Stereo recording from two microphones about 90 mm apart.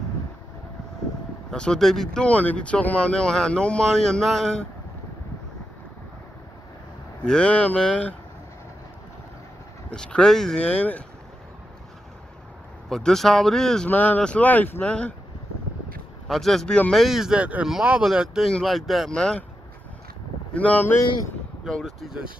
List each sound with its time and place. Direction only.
1.5 s speech: 10° left (ahead or behind)
2.2 s speech: 15° left (ahead or behind)
7.2 s speech: 10° left (ahead or behind)
9.8 s speech: 10° left (ahead or behind)
12.9 s speech: 5° left (ahead or behind)
13.8 s speech: 20° left (ahead or behind)
16.3 s speech: centre (ahead or behind)
16.9 s speech: centre (ahead or behind)
20.5 s speech: 15° left (ahead or behind)
21.6 s speech: 5° left (ahead or behind)